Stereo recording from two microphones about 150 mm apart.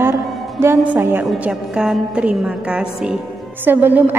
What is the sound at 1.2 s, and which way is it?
A woman's voice, centre (ahead or behind).